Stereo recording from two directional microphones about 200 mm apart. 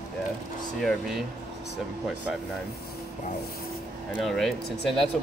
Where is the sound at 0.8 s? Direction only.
Centre (ahead or behind).